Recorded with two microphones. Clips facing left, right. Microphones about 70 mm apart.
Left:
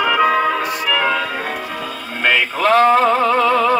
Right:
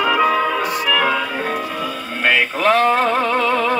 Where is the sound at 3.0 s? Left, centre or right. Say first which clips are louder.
Left 3 dB; centre.